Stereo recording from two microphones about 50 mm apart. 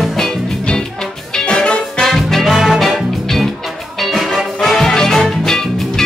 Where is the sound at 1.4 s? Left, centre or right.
Centre.